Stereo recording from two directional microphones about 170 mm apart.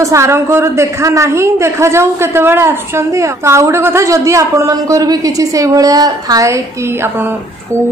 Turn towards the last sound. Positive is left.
turn(degrees=-20)  # may be behind; listen again after turning